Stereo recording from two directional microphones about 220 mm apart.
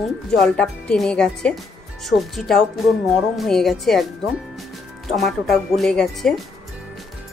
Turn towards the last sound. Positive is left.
turn(degrees=0)  # may be behind; listen again after turning